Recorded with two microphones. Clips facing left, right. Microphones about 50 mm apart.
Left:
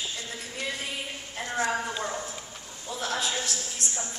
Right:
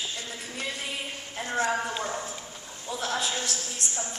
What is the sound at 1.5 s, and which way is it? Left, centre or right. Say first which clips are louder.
Speech: right 1 dB; right.